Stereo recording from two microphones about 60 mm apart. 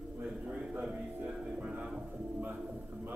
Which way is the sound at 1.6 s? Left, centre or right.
Centre.